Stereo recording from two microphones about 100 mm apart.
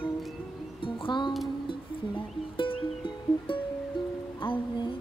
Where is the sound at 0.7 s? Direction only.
60° left (ahead or behind).